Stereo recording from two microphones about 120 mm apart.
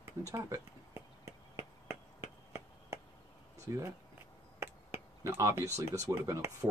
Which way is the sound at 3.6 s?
25° right (ahead or behind).